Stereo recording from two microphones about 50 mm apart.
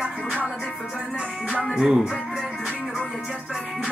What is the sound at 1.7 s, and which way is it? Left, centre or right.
Speech, centre.